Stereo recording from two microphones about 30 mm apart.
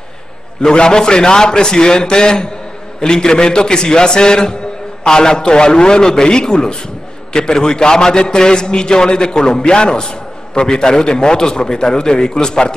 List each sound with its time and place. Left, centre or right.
0.6 s a man's voice: left